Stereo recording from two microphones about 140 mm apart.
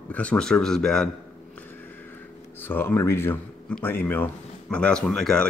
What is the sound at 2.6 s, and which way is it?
Speech, 15° left (ahead or behind).